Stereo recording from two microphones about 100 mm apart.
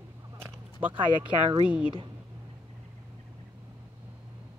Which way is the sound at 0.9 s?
55° right (ahead or behind).